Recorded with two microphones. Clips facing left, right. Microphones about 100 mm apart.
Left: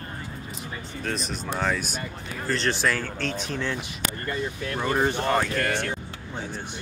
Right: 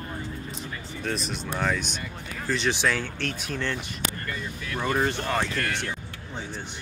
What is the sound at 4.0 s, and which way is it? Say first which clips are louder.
Speech: left 3 dB; 40° left (ahead or behind).